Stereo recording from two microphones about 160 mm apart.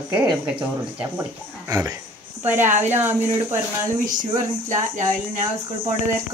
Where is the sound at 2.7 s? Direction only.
45° right (ahead or behind).